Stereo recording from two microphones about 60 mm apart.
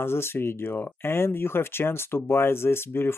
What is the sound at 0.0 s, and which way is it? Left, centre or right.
Speech, left.